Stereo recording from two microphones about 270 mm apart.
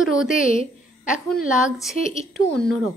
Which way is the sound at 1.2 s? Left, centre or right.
Centre.